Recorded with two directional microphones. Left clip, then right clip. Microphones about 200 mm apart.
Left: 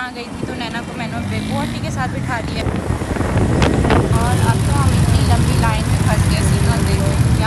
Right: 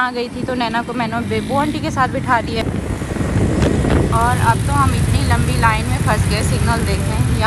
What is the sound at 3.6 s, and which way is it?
Vehicle, centre (ahead or behind).